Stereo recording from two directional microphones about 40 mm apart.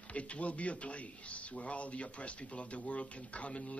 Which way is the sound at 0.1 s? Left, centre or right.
Left.